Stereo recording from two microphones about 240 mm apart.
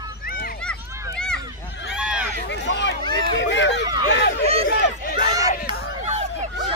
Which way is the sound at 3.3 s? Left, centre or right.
Left.